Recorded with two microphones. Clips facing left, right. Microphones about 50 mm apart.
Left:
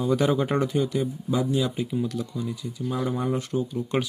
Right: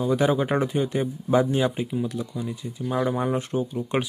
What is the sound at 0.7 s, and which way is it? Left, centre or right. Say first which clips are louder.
Speech: even; right.